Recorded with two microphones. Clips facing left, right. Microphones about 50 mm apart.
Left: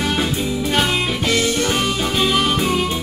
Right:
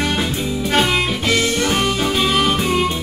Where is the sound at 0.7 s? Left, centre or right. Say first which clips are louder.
Right 3 dB; centre.